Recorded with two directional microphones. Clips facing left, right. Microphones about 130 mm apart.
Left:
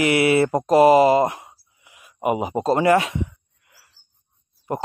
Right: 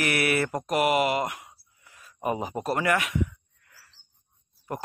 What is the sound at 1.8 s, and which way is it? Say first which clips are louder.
Speech: left 6 dB; 15° left (ahead or behind).